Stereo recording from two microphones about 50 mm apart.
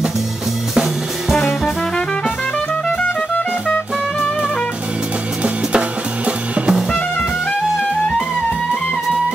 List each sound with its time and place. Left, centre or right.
3.0 s music: left
5.4 s music: right